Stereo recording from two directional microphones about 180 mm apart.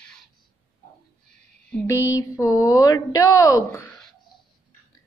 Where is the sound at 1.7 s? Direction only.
10° left (ahead or behind).